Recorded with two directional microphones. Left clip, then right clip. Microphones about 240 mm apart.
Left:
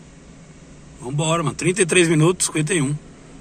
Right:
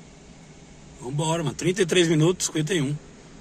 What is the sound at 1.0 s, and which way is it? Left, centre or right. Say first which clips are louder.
Speech: left 5 dB; centre.